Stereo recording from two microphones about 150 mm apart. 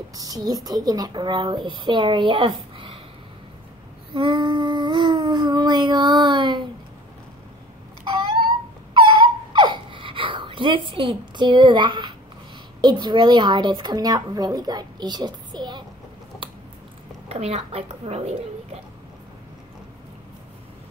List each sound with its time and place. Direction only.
0.1 s a woman's voice: 25° right (ahead or behind)
4.1 s humming: 30° right (ahead or behind)
8.0 s a sound: 30° right (ahead or behind)
12.8 s a woman's voice: 30° right (ahead or behind)
16.4 s a sound: 35° right (ahead or behind)
17.3 s a woman's voice: 45° right (ahead or behind)